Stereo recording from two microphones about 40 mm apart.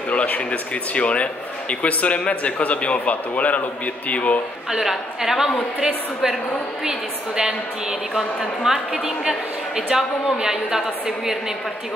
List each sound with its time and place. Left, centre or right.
0.1 s a man's voice: left
4.6 s a woman's voice: centre